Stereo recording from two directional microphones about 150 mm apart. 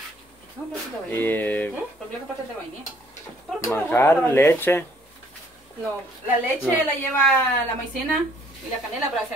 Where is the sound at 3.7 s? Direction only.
15° left (ahead or behind).